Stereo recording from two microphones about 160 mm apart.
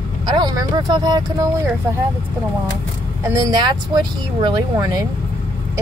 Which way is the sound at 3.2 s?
20° right (ahead or behind).